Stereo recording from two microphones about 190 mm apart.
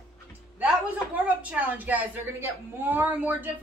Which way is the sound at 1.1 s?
5° right (ahead or behind).